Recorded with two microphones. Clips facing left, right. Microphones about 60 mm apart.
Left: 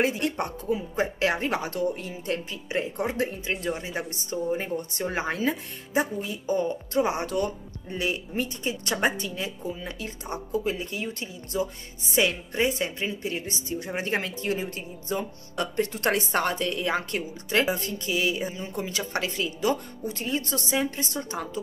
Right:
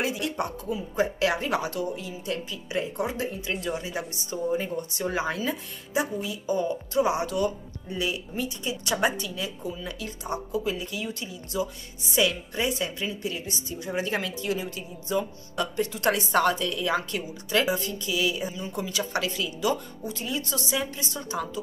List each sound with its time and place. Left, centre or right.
0.0 s speech: left